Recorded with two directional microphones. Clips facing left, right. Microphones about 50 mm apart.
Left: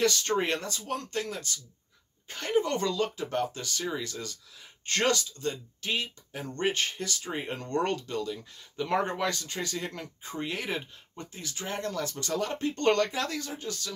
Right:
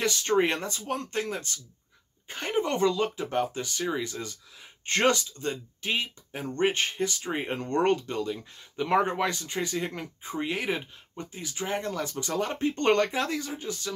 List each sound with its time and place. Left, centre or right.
0.0 s speech: centre